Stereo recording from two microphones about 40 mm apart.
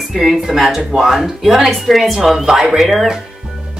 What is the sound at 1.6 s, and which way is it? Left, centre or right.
Speech, centre.